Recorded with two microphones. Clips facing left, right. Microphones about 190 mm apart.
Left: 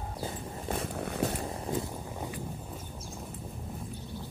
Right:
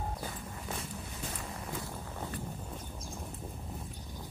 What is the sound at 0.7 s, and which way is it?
Zipper, 60° left (ahead or behind).